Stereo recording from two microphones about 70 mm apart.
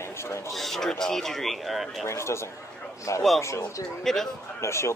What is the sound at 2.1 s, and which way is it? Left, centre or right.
A man's voice, left.